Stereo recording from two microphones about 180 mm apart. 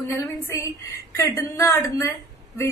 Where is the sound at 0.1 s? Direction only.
15° left (ahead or behind).